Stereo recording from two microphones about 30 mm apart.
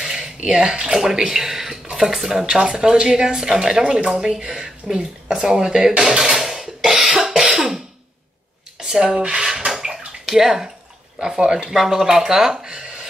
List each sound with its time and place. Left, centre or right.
0.0 s a sound: right
1.2 s speech: centre
6.9 s cough: centre
8.7 s speech: right
9.7 s bathtub: centre
10.2 s speech: centre
11.7 s speech: centre
12.6 s a sound: right